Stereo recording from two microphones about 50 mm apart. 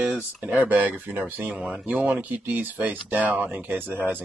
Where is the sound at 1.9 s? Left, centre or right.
Right.